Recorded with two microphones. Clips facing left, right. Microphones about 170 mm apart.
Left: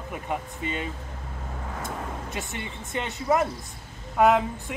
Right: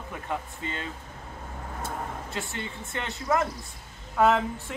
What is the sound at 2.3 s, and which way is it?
Speech, 20° left (ahead or behind).